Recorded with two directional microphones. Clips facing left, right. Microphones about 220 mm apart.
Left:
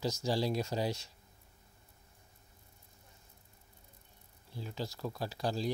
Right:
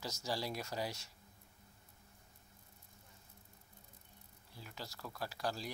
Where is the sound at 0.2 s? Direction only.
25° left (ahead or behind).